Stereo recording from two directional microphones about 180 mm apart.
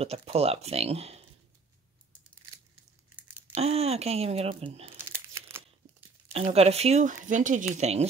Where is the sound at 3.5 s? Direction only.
35° right (ahead or behind).